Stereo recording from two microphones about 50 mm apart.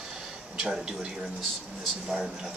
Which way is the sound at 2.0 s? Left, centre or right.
Centre.